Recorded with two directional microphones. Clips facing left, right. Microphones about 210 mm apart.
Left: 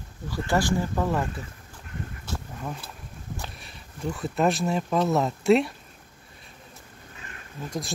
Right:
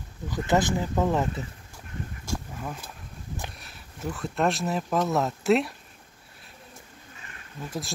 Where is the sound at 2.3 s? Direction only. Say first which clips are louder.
Right 2 dB; 10° right (ahead or behind).